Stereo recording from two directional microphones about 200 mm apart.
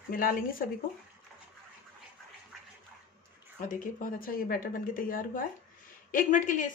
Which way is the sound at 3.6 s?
45° left (ahead or behind).